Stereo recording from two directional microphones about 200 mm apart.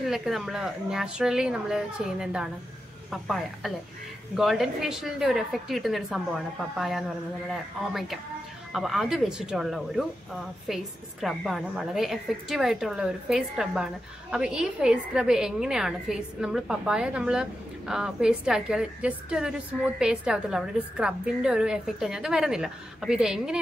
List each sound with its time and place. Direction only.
0.0 s a woman's voice: centre (ahead or behind)